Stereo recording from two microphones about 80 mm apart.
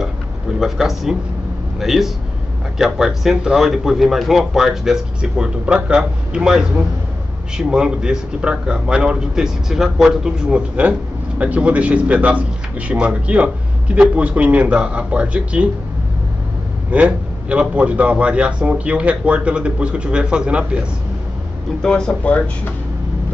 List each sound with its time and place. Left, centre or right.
0.6 s a man's voice: centre
16.9 s a man's voice: centre
21.8 s speech: centre